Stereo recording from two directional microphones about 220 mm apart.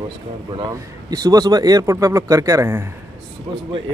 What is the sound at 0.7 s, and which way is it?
Speech, 15° right (ahead or behind).